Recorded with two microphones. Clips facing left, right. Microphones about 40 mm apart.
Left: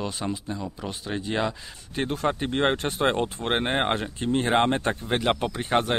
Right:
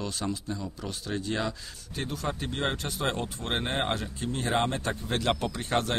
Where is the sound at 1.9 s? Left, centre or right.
Left.